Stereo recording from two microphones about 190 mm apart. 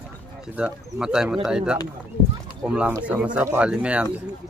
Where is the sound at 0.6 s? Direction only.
5° right (ahead or behind).